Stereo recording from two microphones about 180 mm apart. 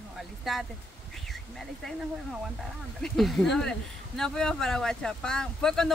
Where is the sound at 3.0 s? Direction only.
Centre (ahead or behind).